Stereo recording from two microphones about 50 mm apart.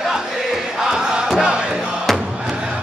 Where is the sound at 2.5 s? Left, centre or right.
Centre.